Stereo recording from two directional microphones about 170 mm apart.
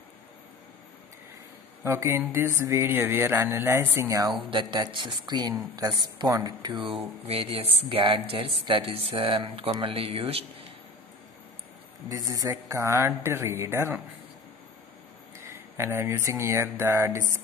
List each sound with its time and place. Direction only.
1.9 s speech: 15° right (ahead or behind)
4.4 s speech: 30° right (ahead or behind)
12.1 s speech: 20° right (ahead or behind)
15.4 s speech: 15° right (ahead or behind)